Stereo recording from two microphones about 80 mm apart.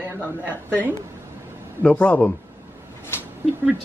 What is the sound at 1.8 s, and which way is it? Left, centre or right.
Speech, centre.